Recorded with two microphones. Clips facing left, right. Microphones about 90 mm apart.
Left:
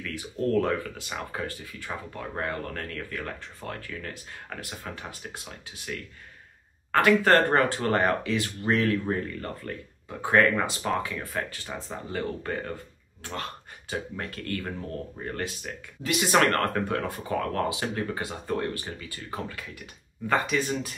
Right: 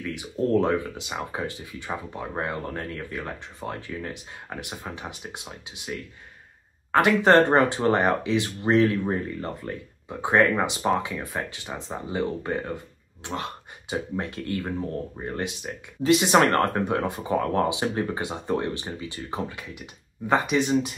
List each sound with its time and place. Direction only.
0.0 s speech: 20° right (ahead or behind)